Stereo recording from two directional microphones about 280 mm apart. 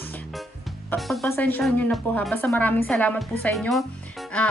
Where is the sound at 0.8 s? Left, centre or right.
Centre.